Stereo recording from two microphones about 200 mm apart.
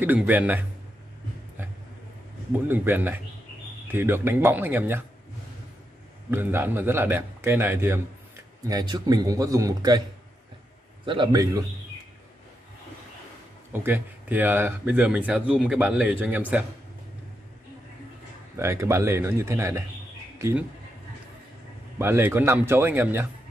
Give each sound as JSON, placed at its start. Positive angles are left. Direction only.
{"t": 0.0, "sound": "speech", "side_deg": -10}
{"t": 2.7, "sound": "speech", "side_deg": -10}
{"t": 6.3, "sound": "speech", "side_deg": -10}
{"t": 11.1, "sound": "a man's voice", "side_deg": -20}
{"t": 13.8, "sound": "speech", "side_deg": -10}
{"t": 18.6, "sound": "speech", "side_deg": -15}
{"t": 21.9, "sound": "speech", "side_deg": -10}